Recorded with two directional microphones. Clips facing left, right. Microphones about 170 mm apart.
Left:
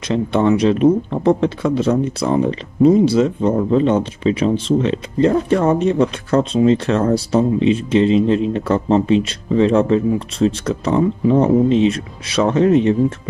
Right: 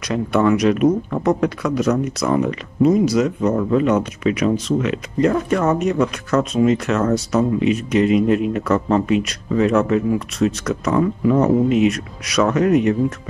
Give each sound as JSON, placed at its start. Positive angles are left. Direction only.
{"t": 0.1, "sound": "speech", "side_deg": 25}